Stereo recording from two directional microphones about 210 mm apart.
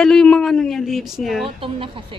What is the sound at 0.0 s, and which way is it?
A man's voice, 5° left (ahead or behind).